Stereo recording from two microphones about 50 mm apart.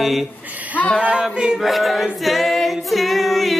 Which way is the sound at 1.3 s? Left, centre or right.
Centre.